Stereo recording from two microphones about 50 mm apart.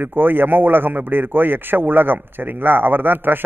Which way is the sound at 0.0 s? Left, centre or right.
Right.